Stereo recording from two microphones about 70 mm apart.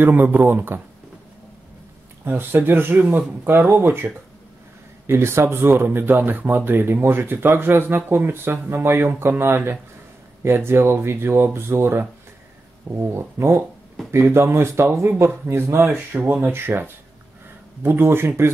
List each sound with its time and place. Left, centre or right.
0.0 s speech: right
2.2 s speech: right